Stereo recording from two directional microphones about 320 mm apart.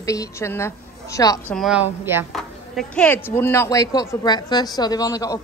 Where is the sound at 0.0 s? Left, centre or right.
Centre.